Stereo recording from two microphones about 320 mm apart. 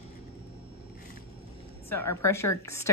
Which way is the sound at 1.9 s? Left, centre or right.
Centre.